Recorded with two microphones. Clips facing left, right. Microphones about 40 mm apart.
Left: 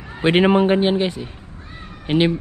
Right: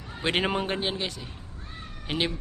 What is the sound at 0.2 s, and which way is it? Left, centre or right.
Speech, left.